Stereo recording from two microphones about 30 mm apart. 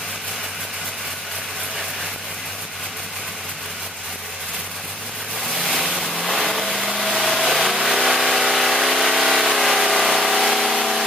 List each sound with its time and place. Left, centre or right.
5.5 s waves: centre
6.1 s vehicle: centre